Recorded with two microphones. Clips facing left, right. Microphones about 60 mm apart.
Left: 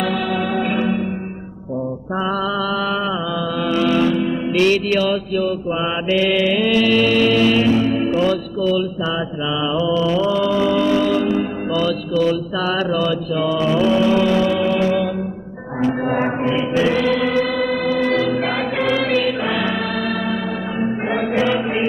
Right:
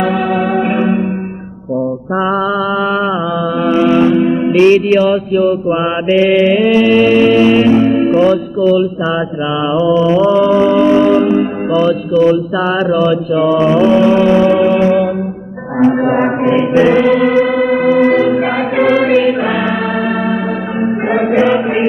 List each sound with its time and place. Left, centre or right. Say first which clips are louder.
3.7 s music: right 7 dB; right
9.9 s music: right 9 dB; right
15.8 s speech: right 8 dB; right
16.5 s music: right 9 dB; right
18.8 s choir: right 9 dB; right